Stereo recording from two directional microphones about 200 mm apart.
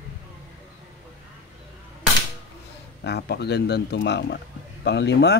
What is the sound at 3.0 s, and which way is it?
Speech, 55° left (ahead or behind).